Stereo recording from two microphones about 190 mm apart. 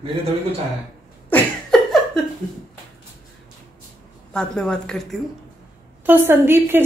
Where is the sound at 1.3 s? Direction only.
Centre (ahead or behind).